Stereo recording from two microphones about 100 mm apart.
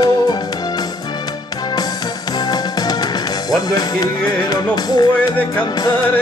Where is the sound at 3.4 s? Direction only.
40° left (ahead or behind).